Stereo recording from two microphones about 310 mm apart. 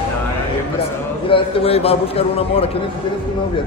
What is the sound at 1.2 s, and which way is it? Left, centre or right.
A man's voice, centre.